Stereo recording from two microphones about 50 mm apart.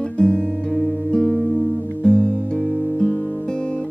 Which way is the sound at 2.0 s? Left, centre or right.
Centre.